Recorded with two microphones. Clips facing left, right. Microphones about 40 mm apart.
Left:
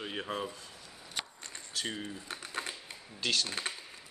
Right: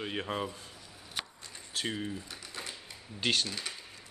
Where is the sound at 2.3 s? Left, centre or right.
Left.